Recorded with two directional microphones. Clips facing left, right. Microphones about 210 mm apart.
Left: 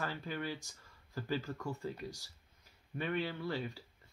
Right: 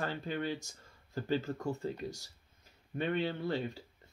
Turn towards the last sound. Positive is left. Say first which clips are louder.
# right 4 dB
turn(degrees=-25)  # may be behind; listen again after turning